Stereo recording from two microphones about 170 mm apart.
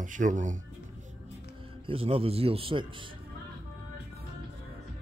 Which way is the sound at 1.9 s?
35° right (ahead or behind).